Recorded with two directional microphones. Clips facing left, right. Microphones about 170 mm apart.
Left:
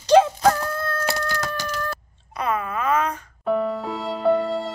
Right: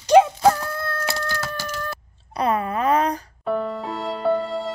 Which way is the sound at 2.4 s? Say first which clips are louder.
Right 3 dB; 35° right (ahead or behind).